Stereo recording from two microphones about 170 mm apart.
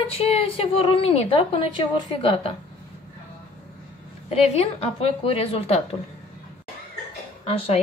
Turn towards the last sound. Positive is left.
turn(degrees=35)  # may be behind; listen again after turning